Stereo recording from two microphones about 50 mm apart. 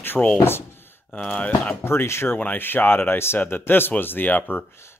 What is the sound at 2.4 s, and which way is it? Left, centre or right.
Speech, left.